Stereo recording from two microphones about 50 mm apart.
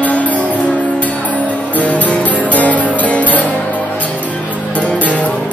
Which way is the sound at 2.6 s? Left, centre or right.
Left.